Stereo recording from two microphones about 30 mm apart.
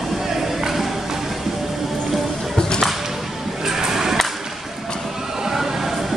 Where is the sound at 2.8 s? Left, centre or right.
Centre.